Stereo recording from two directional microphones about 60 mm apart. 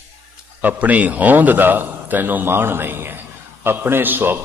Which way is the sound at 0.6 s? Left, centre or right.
Right.